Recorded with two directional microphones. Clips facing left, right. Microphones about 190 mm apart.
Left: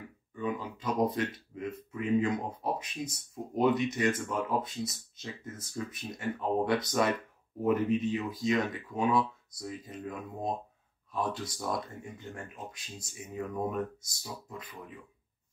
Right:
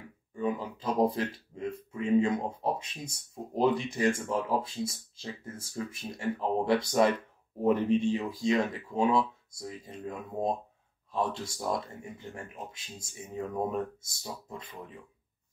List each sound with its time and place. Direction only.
0.3 s speech: 30° right (ahead or behind)
13.4 s speech: 25° right (ahead or behind)